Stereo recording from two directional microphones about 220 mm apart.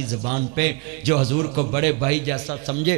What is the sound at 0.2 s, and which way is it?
A man's voice, 15° right (ahead or behind).